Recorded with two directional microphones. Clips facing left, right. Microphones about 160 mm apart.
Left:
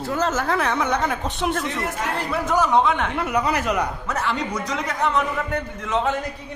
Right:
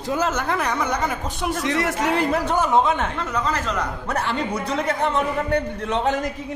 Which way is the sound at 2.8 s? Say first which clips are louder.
Even; 45° right (ahead or behind).